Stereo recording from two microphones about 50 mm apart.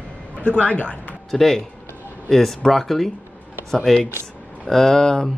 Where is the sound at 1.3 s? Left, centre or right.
Centre.